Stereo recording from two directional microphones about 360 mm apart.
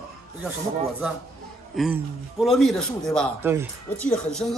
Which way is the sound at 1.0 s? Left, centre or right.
Centre.